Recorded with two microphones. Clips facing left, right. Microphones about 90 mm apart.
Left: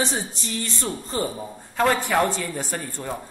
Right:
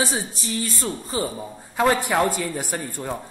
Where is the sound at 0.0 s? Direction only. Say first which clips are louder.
Right 1 dB; 5° right (ahead or behind).